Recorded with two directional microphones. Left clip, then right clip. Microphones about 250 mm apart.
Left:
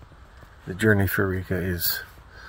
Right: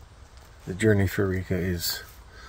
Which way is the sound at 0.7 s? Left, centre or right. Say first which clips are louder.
Left 2 dB; centre.